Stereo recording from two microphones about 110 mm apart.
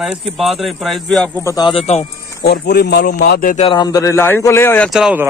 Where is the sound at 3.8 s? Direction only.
35° left (ahead or behind).